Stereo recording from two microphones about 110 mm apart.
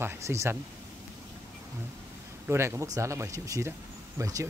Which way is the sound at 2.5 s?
25° right (ahead or behind).